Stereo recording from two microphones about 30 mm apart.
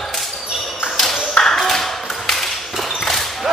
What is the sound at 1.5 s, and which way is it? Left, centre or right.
Tap, centre.